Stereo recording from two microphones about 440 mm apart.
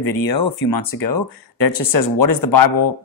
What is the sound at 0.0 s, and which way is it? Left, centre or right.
Speech, left.